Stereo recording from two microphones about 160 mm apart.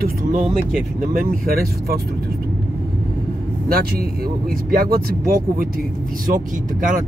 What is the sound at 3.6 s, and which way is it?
Speech, 70° right (ahead or behind).